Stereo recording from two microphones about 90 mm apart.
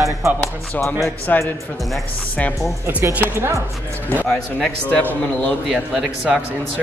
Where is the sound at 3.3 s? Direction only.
30° right (ahead or behind).